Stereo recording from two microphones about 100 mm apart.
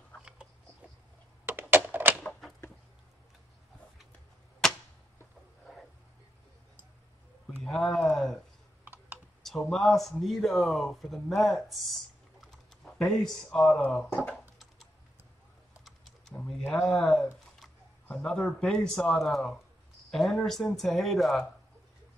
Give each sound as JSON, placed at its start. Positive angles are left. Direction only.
{"t": 1.4, "sound": "typewriter", "side_deg": -20}
{"t": 4.6, "sound": "arrow", "side_deg": 5}
{"t": 7.6, "sound": "speech", "side_deg": 0}
{"t": 8.8, "sound": "typing", "side_deg": -20}
{"t": 9.4, "sound": "a man's voice", "side_deg": 0}
{"t": 15.8, "sound": "typing", "side_deg": 0}
{"t": 16.3, "sound": "speech", "side_deg": 5}